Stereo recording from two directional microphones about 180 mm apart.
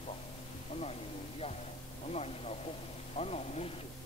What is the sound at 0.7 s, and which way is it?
Speech, 35° left (ahead or behind).